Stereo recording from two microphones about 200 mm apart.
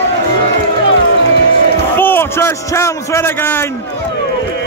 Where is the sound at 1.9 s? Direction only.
10° left (ahead or behind).